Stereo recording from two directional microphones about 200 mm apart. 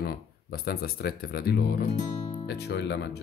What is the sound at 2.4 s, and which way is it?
Speech, 55° left (ahead or behind).